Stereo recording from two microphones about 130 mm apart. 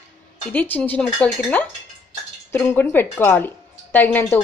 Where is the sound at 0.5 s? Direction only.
10° left (ahead or behind).